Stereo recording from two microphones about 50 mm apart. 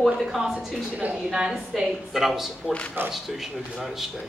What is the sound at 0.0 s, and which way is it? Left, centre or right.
A woman's voice, centre.